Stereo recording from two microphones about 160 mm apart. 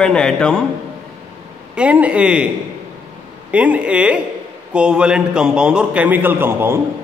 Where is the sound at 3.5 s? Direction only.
10° right (ahead or behind).